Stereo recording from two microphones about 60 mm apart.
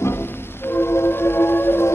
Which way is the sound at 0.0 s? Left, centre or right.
Left.